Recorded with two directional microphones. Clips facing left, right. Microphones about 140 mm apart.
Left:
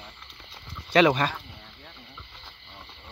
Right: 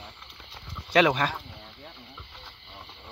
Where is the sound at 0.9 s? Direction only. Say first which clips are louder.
Left 2 dB; 5° right (ahead or behind).